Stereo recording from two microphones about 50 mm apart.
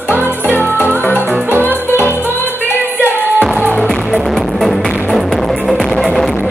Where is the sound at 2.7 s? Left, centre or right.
Right.